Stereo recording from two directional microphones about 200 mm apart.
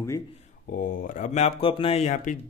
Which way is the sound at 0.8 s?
40° left (ahead or behind).